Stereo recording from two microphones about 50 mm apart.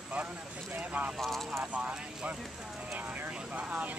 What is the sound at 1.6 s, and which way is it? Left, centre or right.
Speech, right.